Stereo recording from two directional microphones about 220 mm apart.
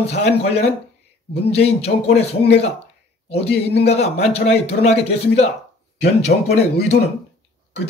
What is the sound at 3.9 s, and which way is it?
Speech, 30° left (ahead or behind).